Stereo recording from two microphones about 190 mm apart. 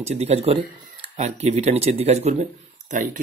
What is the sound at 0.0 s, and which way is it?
Speech, 35° right (ahead or behind).